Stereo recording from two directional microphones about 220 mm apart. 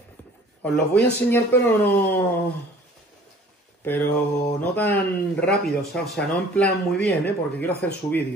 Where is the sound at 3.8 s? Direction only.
10° left (ahead or behind).